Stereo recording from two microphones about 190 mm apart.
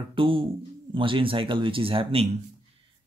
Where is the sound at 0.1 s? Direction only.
25° right (ahead or behind).